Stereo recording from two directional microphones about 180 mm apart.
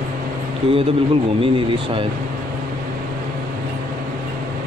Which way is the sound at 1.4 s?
30° right (ahead or behind).